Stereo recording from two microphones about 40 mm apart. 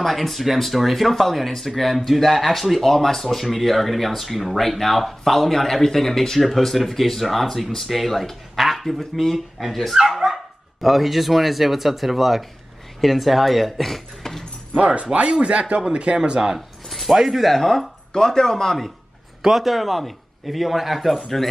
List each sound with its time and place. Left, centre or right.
0.0 s speech: centre
14.8 s speech: right
16.5 s a sound: centre
17.2 s speech: centre
17.5 s speech: centre
19.4 s speech: centre